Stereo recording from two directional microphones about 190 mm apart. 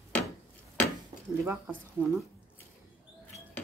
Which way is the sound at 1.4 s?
10° right (ahead or behind).